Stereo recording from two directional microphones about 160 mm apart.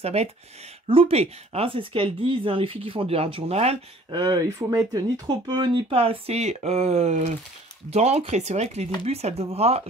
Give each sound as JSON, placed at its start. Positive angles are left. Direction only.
{"t": 0.0, "sound": "speech", "side_deg": -40}
{"t": 4.1, "sound": "speech", "side_deg": -25}